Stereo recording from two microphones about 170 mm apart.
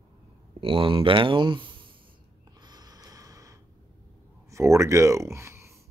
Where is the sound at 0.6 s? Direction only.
30° right (ahead or behind).